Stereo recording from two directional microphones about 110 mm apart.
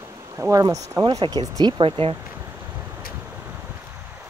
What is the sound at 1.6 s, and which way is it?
Speech, 50° right (ahead or behind).